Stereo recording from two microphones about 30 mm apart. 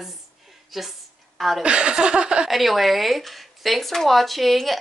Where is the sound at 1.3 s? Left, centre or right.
Centre.